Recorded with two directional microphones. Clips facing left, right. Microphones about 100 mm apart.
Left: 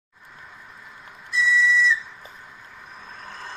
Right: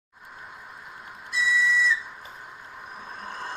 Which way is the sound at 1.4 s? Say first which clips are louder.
Left 3 dB; 50° right (ahead or behind).